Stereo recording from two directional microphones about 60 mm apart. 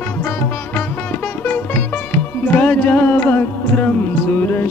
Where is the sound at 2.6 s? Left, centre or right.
Left.